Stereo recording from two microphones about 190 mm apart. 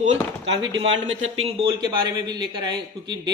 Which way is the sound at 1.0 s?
90° right.